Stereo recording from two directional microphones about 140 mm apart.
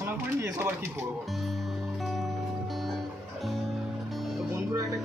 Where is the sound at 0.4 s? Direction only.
15° right (ahead or behind).